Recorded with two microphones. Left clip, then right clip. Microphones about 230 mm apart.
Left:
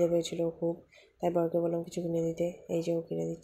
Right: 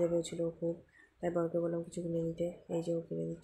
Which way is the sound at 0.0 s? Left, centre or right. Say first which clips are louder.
Left 5 dB; centre.